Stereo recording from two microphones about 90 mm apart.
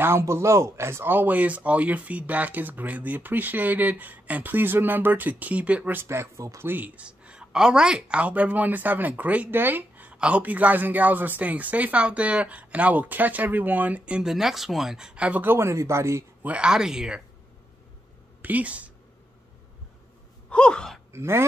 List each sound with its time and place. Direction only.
0.0 s speech: 30° right (ahead or behind)
6.7 s speech: 15° right (ahead or behind)
15.4 s speech: 30° right (ahead or behind)
16.4 s speech: 10° right (ahead or behind)
18.4 s speech: 15° right (ahead or behind)
20.4 s gasp: 10° left (ahead or behind)
21.1 s speech: 30° right (ahead or behind)